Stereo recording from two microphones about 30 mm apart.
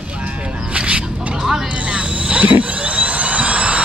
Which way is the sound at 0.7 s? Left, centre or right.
Right.